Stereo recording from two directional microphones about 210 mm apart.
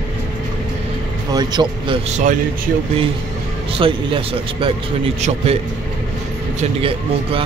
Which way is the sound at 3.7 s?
25° right (ahead or behind).